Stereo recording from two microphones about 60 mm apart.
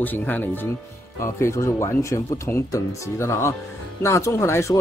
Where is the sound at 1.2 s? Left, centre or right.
Left.